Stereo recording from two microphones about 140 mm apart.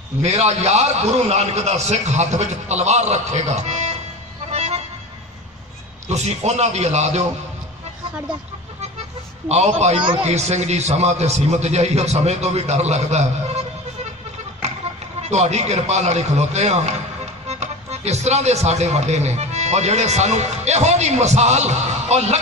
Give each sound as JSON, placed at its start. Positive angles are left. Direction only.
{"t": 0.2, "sound": "a man's voice", "side_deg": -50}
{"t": 4.5, "sound": "music", "side_deg": -50}
{"t": 6.0, "sound": "a man's voice", "side_deg": -50}
{"t": 9.5, "sound": "a man's voice", "side_deg": -50}
{"t": 15.2, "sound": "a man's voice", "side_deg": -50}